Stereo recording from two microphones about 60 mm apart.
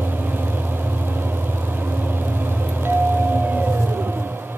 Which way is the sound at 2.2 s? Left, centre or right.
Right.